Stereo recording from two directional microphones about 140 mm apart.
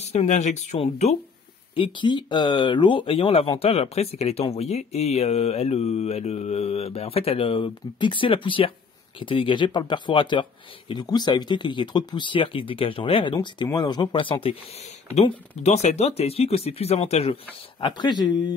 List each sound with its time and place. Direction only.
0.1 s speech: 55° left (ahead or behind)
1.8 s speech: 35° left (ahead or behind)